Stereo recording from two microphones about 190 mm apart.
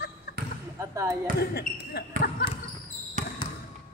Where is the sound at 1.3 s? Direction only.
60° left (ahead or behind).